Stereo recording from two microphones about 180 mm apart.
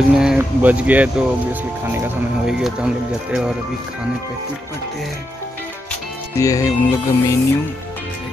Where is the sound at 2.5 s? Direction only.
5° right (ahead or behind).